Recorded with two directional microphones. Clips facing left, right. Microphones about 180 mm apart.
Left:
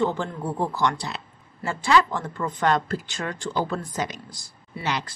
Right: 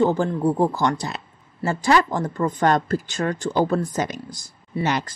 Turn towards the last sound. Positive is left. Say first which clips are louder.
# right 5 dB
turn(degrees=-45)  # may be behind; listen again after turning